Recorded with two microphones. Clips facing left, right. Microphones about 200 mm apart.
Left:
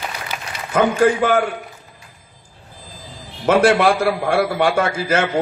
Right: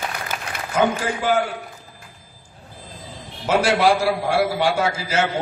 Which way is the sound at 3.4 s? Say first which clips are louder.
Left 4 dB; 55° left (ahead or behind).